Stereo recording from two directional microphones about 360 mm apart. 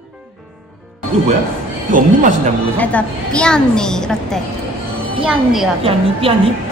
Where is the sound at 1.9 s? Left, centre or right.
Right.